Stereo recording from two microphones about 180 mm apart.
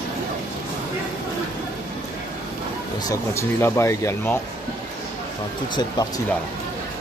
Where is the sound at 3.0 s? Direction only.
15° left (ahead or behind).